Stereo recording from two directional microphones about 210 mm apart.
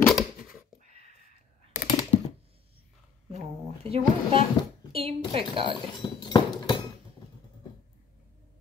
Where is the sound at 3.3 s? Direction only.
25° right (ahead or behind).